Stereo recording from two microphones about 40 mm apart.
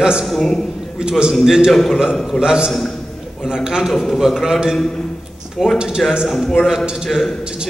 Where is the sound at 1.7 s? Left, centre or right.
Centre.